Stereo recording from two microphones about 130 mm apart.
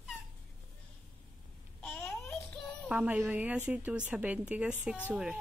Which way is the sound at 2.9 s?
10° right (ahead or behind).